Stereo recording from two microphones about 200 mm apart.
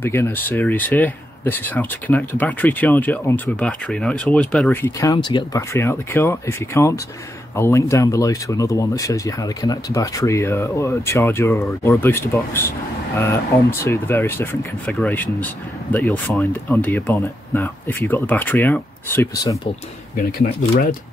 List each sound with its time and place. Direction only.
0.0 s speech: 10° left (ahead or behind)
13.8 s speech: 10° left (ahead or behind)
20.2 s speech: 45° left (ahead or behind)